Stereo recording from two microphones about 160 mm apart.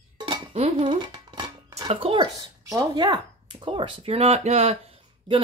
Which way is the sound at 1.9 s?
35° right (ahead or behind).